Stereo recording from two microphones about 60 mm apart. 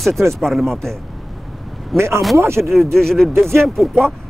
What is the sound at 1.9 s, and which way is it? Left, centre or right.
Speech, right.